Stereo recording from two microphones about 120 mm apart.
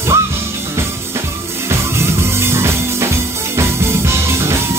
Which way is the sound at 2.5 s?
20° right (ahead or behind).